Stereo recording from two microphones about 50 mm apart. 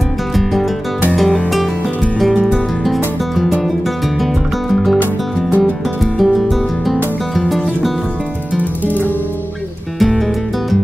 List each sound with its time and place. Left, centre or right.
0.4 s music: centre
2.1 s music: centre
6.1 s music: centre
8.8 s music: left
9.9 s music: centre